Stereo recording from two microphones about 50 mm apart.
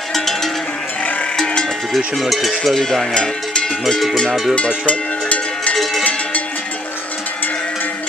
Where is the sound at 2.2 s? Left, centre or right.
Centre.